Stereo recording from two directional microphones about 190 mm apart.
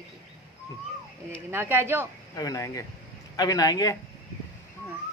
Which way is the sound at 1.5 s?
10° right (ahead or behind).